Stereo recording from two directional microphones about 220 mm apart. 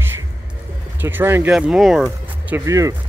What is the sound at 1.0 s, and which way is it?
Speech, 10° right (ahead or behind).